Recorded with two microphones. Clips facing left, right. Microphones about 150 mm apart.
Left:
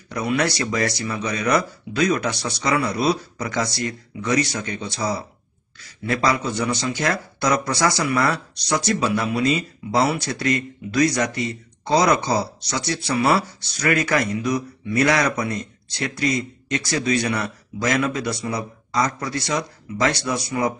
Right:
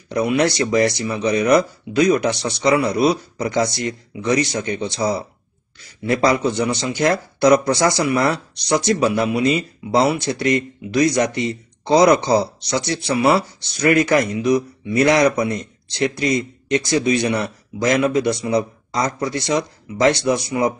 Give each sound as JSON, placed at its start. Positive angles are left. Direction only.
{"t": 0.6, "sound": "speech", "side_deg": -20}